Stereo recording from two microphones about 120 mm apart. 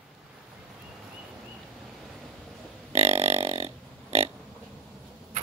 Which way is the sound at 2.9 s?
60° right (ahead or behind).